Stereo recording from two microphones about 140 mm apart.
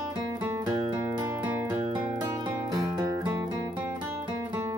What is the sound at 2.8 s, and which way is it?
Music, 25° right (ahead or behind).